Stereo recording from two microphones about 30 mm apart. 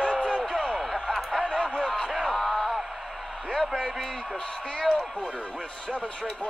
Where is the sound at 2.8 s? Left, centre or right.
Centre.